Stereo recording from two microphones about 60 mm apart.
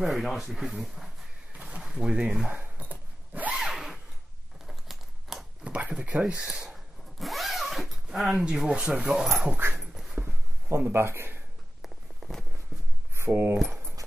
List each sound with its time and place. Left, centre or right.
0.0 s speech: centre
1.8 s a sound: centre
3.5 s a sound: centre
4.6 s typing: centre
5.6 s a sound: right
6.0 s speech: centre
7.2 s zipper: centre
8.6 s speech: centre
9.8 s dog: centre
10.1 s a sound: right
10.9 s speech: right
11.8 s walk: centre
13.1 s speech: right